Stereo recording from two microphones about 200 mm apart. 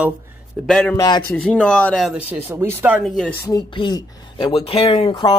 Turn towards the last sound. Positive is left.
turn(degrees=25)  # may be behind; listen again after turning